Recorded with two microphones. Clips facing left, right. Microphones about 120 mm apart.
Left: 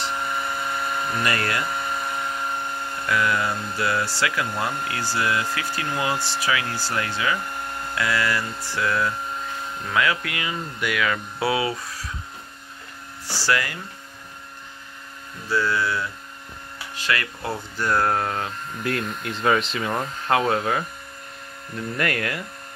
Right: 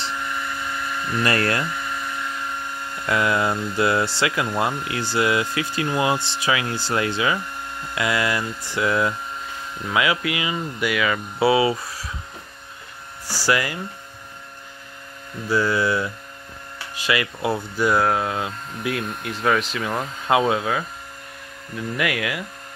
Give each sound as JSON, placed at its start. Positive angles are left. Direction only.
{"t": 0.4, "sound": "vacuum cleaner", "side_deg": 35}
{"t": 1.7, "sound": "a sound", "side_deg": 35}
{"t": 3.1, "sound": "speech", "side_deg": -25}
{"t": 9.9, "sound": "speech", "side_deg": -10}
{"t": 13.3, "sound": "speech", "side_deg": -10}
{"t": 15.5, "sound": "speech", "side_deg": -15}
{"t": 20.2, "sound": "speech", "side_deg": -15}